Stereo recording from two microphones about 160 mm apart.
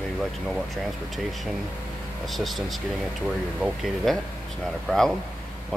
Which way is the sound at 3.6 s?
Centre (ahead or behind).